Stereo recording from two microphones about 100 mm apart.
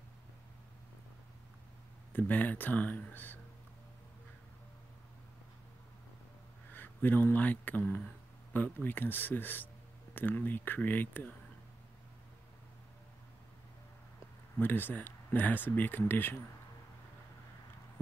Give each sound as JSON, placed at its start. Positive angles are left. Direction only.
{"t": 2.1, "sound": "speech", "side_deg": 15}
{"t": 6.7, "sound": "speech", "side_deg": 20}
{"t": 14.6, "sound": "speech", "side_deg": 20}